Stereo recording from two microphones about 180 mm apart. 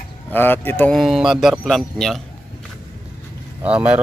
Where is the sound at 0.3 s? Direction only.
10° left (ahead or behind).